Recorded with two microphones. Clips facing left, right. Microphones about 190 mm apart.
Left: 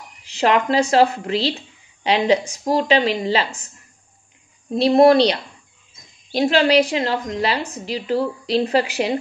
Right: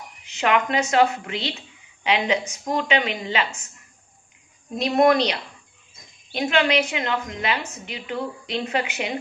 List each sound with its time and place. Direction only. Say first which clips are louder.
0.2 s a woman's voice: left 4 dB; 35° left (ahead or behind)
4.7 s a woman's voice: left 6 dB; 30° left (ahead or behind)